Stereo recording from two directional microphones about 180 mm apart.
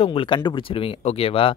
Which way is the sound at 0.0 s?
30° left (ahead or behind).